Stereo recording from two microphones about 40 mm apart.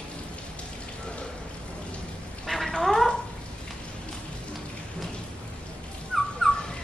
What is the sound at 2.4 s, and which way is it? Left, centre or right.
Cat, centre.